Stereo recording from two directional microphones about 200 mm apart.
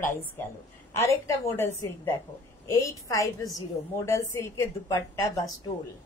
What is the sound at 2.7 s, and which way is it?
A woman's voice, 15° left (ahead or behind).